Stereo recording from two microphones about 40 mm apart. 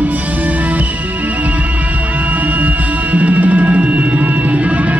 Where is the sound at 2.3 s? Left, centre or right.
Right.